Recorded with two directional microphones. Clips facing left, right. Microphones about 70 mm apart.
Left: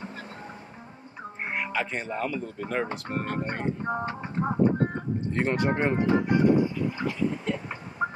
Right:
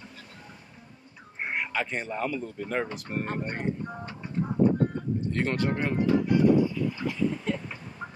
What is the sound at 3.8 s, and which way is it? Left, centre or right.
Speech, left.